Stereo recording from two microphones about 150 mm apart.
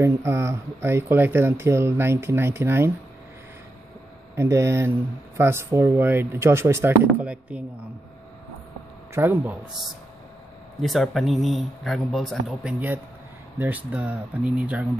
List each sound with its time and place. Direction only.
0.0 s speech: 20° right (ahead or behind)
4.4 s speech: 15° right (ahead or behind)
9.1 s speech: 15° right (ahead or behind)
10.8 s speech: centre (ahead or behind)